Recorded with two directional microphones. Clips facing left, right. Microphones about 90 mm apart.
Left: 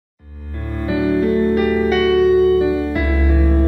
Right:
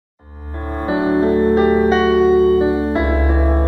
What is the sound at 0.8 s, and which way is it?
Music, 30° right (ahead or behind).